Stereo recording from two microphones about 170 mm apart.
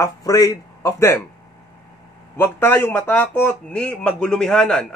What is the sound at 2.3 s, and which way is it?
Speech, 10° left (ahead or behind).